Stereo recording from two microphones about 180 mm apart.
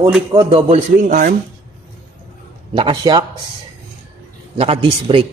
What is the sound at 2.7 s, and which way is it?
Speech, 30° right (ahead or behind).